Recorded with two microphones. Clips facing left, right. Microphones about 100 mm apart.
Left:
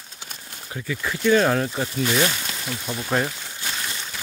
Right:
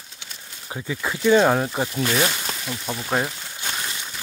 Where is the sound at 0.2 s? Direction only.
45° left (ahead or behind).